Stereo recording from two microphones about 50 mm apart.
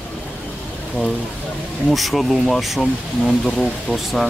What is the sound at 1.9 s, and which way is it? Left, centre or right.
Speech, centre.